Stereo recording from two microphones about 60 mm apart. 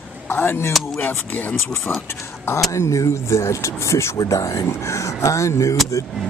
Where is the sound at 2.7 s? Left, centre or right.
Left.